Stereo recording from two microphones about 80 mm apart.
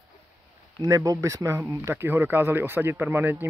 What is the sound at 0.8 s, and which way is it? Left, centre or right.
Speech, right.